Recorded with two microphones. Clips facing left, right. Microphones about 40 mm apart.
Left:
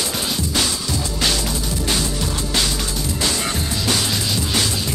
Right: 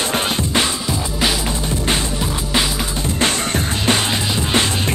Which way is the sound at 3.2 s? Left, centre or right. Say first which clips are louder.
Right 4 dB; right.